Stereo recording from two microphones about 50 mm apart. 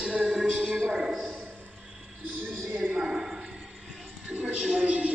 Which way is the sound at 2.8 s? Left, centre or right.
Centre.